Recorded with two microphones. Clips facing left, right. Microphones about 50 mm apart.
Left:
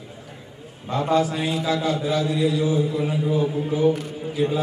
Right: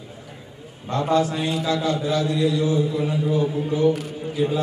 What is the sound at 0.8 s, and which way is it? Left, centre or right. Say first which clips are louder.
A man's voice: even; centre.